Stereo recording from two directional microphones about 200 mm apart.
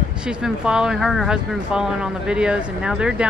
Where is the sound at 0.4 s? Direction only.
5° right (ahead or behind).